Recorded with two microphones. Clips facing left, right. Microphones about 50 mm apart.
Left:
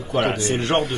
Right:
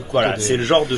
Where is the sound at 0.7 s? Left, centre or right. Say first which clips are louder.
Right 5 dB; right.